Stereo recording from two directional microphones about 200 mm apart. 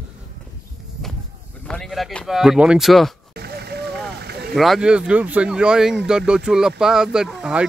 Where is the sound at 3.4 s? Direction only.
55° right (ahead or behind).